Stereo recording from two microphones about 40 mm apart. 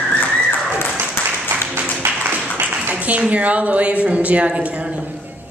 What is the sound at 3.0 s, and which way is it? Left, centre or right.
Speech, right.